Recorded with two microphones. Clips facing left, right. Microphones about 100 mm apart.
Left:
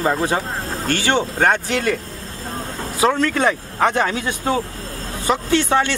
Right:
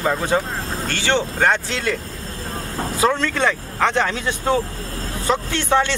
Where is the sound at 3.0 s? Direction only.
15° left (ahead or behind).